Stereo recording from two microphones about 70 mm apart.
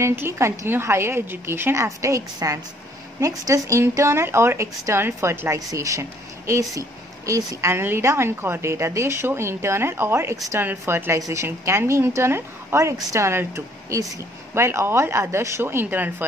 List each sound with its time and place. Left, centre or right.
0.0 s a woman's voice: right
5.7 s a woman's voice: right
11.1 s speech: right
11.4 s a woman's voice: right